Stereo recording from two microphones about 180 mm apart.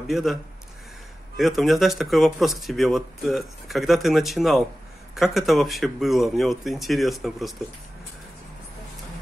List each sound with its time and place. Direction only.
0.1 s speech: centre (ahead or behind)